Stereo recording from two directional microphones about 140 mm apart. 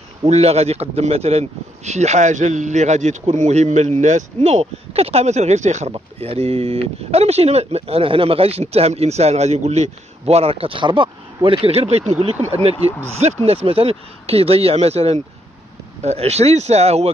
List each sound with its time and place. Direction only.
0.3 s speech: 50° right (ahead or behind)
5.9 s speech: 45° right (ahead or behind)